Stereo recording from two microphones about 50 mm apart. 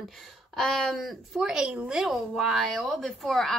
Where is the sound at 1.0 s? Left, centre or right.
Centre.